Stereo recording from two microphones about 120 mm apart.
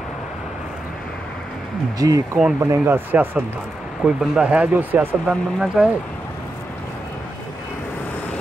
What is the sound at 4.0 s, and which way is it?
Speech, 5° right (ahead or behind).